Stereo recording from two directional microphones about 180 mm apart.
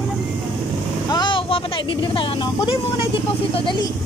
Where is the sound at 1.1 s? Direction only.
25° left (ahead or behind).